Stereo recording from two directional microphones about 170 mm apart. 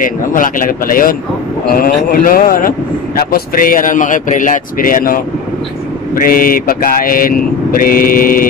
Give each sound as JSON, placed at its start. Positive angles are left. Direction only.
{"t": 0.0, "sound": "speech", "side_deg": 50}
{"t": 1.7, "sound": "mantra", "side_deg": 55}